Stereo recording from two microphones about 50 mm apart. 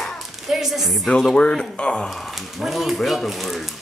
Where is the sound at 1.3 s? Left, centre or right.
Centre.